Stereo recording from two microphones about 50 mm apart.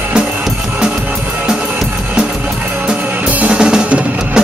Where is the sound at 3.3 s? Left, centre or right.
Right.